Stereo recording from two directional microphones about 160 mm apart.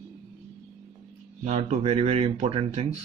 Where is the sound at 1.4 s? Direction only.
45° right (ahead or behind).